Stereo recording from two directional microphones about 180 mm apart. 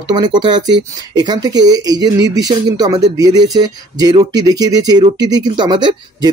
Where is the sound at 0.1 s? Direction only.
25° right (ahead or behind).